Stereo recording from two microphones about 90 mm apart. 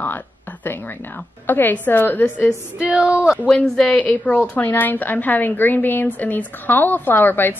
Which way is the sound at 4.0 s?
15° left (ahead or behind).